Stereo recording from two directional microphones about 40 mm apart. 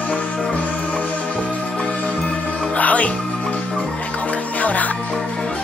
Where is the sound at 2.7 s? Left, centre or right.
Left.